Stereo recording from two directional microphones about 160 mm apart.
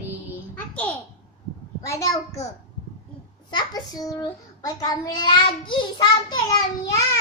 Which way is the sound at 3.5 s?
25° left (ahead or behind).